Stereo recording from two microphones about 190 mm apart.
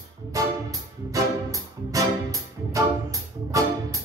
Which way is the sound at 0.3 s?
15° right (ahead or behind).